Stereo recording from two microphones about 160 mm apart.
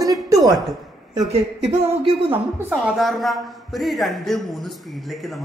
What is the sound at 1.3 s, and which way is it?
Speech, 40° right (ahead or behind).